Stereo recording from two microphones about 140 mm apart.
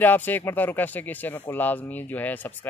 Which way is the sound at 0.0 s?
15° left (ahead or behind).